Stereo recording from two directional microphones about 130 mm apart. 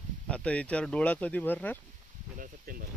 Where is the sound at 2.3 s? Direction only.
90° right.